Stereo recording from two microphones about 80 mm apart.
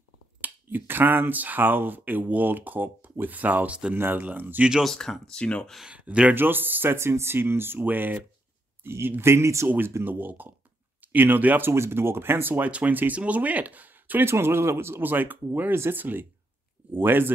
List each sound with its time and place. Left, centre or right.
0.4 s speech: right
3.9 s speech: right
4.8 s speech: centre
5.8 s speech: centre
14.3 s speech: right